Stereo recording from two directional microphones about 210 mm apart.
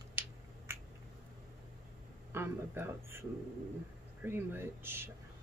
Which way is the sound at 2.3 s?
10° right (ahead or behind).